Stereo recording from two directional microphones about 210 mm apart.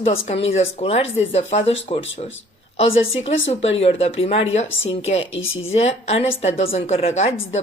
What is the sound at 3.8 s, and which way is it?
Speech, 30° left (ahead or behind).